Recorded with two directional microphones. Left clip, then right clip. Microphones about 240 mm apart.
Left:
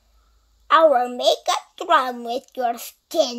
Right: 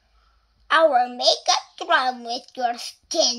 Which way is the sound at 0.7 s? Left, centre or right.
Left.